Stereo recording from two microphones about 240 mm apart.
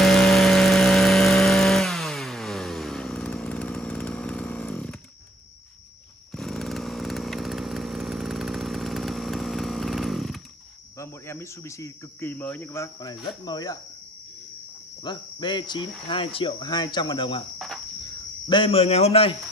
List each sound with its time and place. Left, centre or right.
0.0 s vehicle: centre
6.3 s chainsaw: centre
11.0 s speech: centre
15.0 s speech: centre
18.5 s speech: left